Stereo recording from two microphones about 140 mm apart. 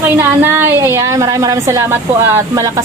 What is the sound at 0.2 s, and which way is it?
A woman's voice, 15° right (ahead or behind).